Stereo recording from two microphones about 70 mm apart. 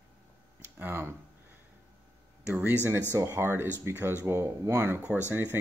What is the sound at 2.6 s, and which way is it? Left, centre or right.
Speech, right.